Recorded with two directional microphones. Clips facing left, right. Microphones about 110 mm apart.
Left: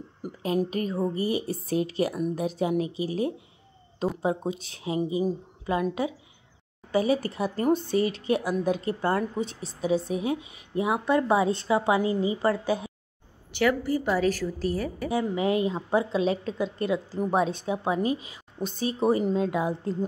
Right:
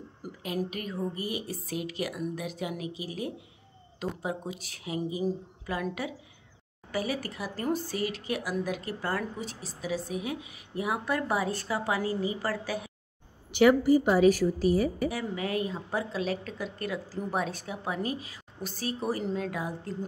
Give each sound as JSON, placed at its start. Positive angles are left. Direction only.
{"t": 0.7, "sound": "a woman's voice", "side_deg": 35}
{"t": 13.5, "sound": "a woman's voice", "side_deg": -15}
{"t": 15.0, "sound": "a woman's voice", "side_deg": 25}